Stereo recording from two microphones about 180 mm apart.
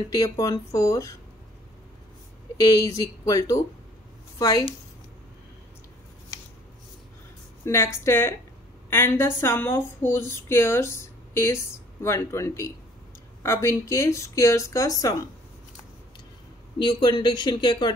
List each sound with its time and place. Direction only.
0.1 s speech: 20° left (ahead or behind)
2.6 s speech: 20° left (ahead or behind)
7.6 s speech: 15° left (ahead or behind)
16.7 s speech: 25° left (ahead or behind)